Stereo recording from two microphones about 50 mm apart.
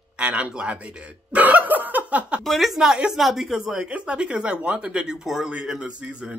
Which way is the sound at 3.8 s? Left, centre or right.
Right.